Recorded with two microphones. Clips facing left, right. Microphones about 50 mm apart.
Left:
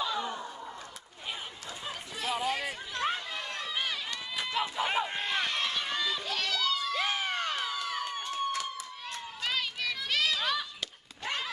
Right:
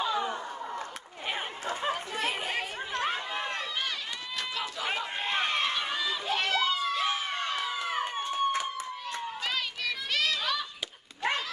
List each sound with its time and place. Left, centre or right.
0.0 s a sound: right
1.2 s chatter: right
3.3 s run: right
4.4 s run: centre
5.2 s run: right
5.8 s run: centre
6.2 s crowd: right
9.4 s children playing: centre